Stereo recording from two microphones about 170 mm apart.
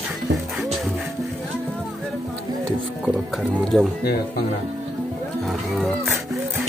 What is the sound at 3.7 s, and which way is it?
Speech, centre (ahead or behind).